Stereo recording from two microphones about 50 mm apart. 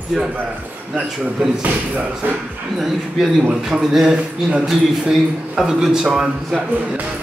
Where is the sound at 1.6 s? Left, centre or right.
Right.